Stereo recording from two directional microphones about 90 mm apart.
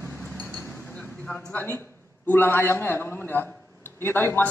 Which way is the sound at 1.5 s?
25° left (ahead or behind).